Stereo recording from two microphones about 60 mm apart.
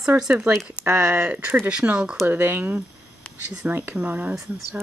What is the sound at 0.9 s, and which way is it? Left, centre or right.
Speech, right.